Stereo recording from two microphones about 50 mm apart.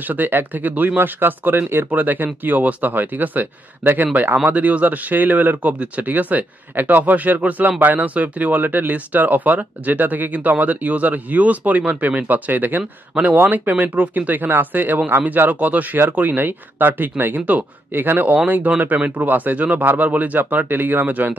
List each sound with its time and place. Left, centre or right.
0.0 s speech: right